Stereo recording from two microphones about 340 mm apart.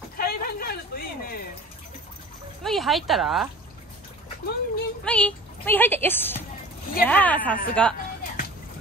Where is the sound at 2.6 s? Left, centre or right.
Centre.